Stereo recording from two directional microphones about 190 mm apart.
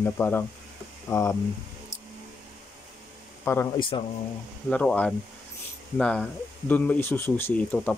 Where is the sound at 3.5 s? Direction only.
15° left (ahead or behind).